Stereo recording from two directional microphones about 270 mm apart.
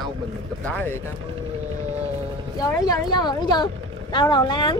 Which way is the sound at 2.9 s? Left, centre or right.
Centre.